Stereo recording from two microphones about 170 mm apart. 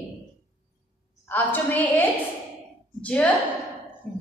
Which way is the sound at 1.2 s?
10° left (ahead or behind).